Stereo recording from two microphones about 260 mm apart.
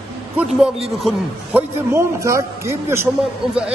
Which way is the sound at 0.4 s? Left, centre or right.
Centre.